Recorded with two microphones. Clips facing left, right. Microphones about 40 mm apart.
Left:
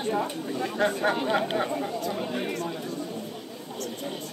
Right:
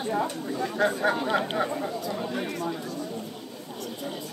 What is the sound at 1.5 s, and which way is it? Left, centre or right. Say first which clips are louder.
Speech: even; centre.